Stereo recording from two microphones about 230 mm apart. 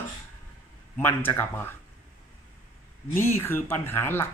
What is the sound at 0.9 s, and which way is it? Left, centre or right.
Speech, centre.